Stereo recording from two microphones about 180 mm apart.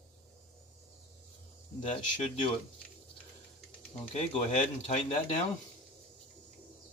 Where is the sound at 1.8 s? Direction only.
40° left (ahead or behind).